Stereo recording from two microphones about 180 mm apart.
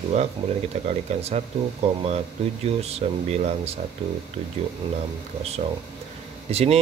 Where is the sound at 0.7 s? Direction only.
40° right (ahead or behind).